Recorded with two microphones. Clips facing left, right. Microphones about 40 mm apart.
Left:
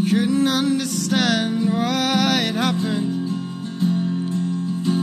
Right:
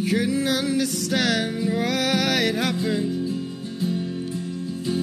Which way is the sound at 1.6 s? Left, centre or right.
Left.